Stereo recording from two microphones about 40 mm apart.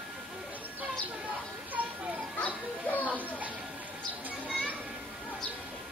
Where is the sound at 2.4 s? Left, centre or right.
Left.